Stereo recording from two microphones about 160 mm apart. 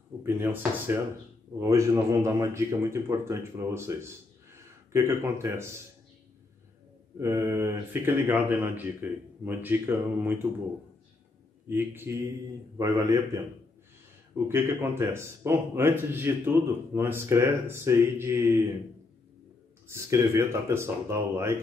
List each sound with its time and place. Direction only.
0.2 s speech: 15° right (ahead or behind)
7.2 s speech: 15° right (ahead or behind)
11.7 s speech: 15° right (ahead or behind)
19.9 s speech: 20° right (ahead or behind)